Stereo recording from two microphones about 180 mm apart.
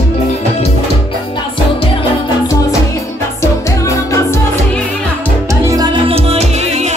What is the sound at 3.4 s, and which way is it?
Music, 15° left (ahead or behind).